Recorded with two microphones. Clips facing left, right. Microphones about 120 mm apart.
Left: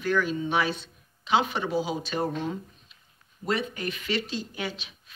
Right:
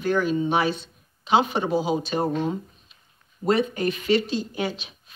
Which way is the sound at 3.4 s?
35° right (ahead or behind).